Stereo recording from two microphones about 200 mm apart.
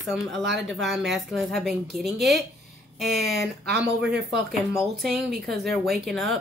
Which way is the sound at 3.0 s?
50° right (ahead or behind).